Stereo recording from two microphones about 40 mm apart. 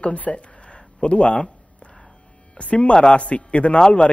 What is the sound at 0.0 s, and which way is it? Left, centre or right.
A man's voice, left.